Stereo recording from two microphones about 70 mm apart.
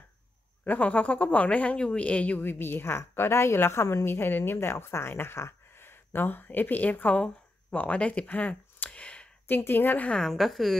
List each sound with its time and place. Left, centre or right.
0.7 s speech: left
2.4 s a woman's voice: left
7.7 s a sound: left
9.5 s speech: left
10.2 s a woman's voice: centre